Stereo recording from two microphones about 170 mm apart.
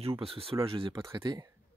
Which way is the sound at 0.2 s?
35° right (ahead or behind).